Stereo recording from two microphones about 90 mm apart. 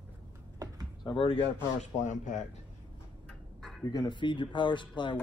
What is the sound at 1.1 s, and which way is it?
Speech, 90° left.